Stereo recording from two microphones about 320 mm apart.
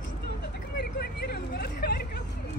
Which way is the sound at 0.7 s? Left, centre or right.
Left.